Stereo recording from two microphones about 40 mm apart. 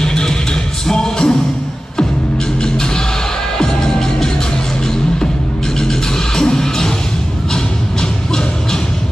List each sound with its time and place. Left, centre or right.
0.0 s music: centre
3.5 s music: centre
5.8 s music: centre